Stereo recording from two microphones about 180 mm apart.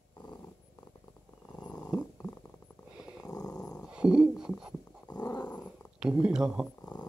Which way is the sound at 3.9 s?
5° right (ahead or behind).